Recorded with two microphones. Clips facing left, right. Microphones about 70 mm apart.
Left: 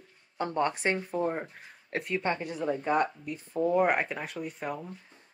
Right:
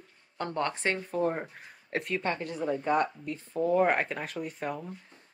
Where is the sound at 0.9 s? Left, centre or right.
Centre.